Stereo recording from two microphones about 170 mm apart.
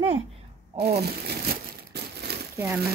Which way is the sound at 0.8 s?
70° right (ahead or behind).